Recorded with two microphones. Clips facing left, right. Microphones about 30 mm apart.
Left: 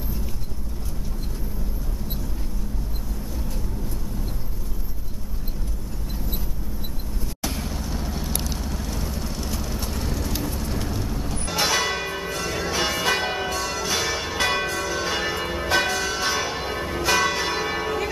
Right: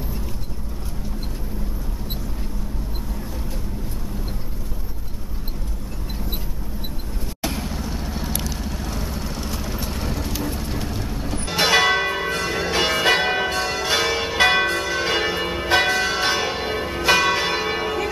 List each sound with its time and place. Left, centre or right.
7.4 s vehicle: centre
11.5 s church bell: right; by 18.1 s centre